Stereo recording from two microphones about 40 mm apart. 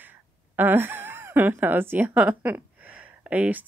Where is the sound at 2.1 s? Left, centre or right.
Right.